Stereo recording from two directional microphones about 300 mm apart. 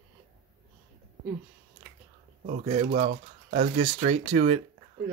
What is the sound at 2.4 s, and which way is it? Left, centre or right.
Speech, right.